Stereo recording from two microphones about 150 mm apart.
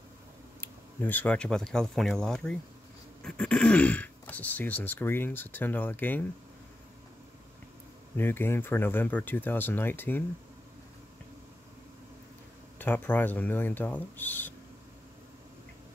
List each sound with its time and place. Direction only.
0.6 s speech: 10° left (ahead or behind)
8.2 s speech: 15° left (ahead or behind)
12.7 s speech: 10° left (ahead or behind)